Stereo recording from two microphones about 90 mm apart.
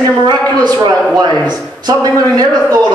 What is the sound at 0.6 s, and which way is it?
Speech, 55° right (ahead or behind).